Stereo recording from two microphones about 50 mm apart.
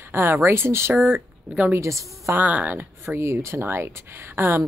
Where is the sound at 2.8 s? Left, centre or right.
Right.